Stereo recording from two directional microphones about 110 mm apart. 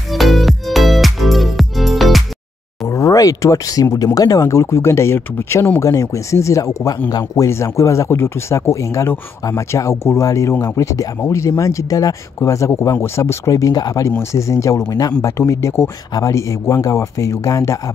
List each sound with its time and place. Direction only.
0.1 s music: centre (ahead or behind)
2.9 s speech: 30° left (ahead or behind)